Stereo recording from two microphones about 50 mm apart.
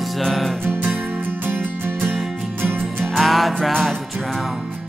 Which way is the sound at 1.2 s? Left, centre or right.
Right.